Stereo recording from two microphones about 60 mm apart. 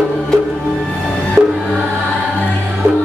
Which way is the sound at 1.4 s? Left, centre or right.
Right.